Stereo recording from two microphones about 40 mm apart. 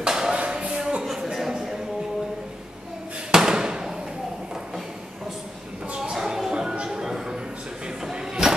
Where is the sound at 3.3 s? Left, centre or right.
Centre.